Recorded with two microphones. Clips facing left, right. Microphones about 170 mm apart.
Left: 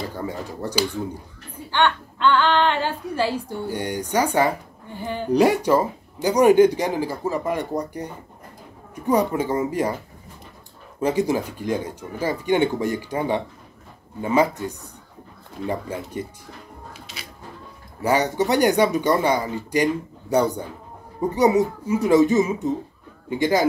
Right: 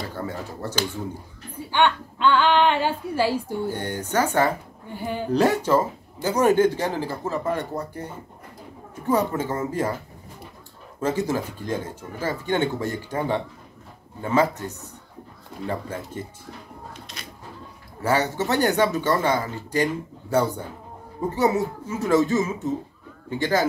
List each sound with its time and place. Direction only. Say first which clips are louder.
0.1 s speech: left 2 dB; 15° left (ahead or behind)
1.5 s a woman's voice: even; 10° right (ahead or behind)
3.7 s speech: left 4 dB; 15° left (ahead or behind)
5.0 s a woman's voice: even; 10° right (ahead or behind)
5.3 s speech: left 3 dB; 15° left (ahead or behind)
11.0 s speech: left 3 dB; 15° left (ahead or behind)
16.9 s music: even; 5° left (ahead or behind)
18.0 s speech: left 3 dB; 15° left (ahead or behind)